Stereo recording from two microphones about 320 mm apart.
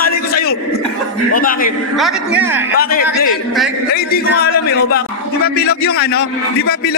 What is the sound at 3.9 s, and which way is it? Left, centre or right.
A man's voice, left.